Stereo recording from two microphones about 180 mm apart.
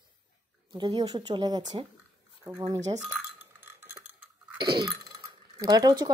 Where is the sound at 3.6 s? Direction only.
10° right (ahead or behind).